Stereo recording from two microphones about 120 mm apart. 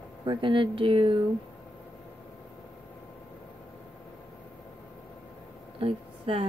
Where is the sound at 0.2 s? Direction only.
40° right (ahead or behind).